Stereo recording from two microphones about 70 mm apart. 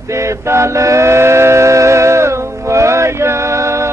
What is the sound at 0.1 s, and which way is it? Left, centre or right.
Train, right.